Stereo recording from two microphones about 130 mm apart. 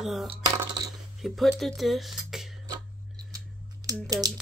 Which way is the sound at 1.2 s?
Centre (ahead or behind).